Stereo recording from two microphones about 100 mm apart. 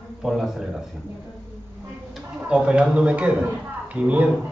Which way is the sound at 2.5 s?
10° right (ahead or behind).